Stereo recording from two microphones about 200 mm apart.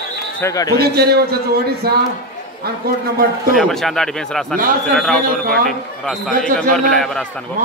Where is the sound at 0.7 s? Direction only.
50° right (ahead or behind).